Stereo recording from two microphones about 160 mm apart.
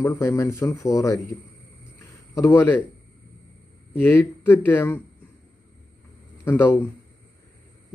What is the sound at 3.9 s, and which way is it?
Speech, 15° left (ahead or behind).